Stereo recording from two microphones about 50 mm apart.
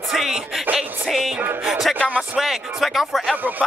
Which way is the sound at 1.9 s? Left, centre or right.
Left.